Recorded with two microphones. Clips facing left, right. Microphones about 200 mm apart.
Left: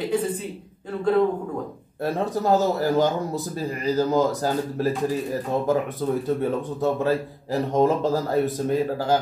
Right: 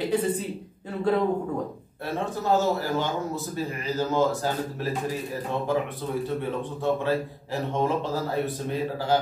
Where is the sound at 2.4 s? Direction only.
40° left (ahead or behind).